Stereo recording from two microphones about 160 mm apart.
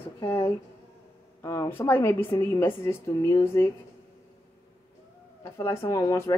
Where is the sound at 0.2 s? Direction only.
15° left (ahead or behind).